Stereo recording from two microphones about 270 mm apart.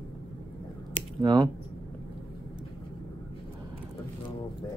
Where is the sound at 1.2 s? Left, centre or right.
Centre.